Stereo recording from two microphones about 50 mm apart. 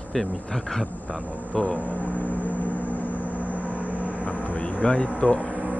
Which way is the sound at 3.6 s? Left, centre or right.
Right.